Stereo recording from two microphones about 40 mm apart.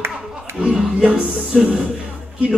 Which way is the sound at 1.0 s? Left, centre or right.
Right.